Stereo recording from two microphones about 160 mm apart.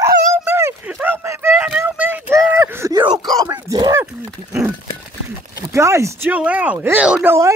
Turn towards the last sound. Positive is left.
turn(degrees=-5)  # may be behind; listen again after turning